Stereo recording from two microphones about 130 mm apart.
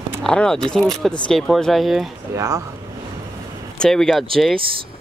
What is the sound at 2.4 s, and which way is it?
Speech, 25° right (ahead or behind).